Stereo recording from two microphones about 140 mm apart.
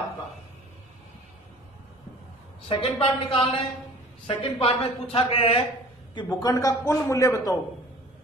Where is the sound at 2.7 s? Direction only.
40° left (ahead or behind).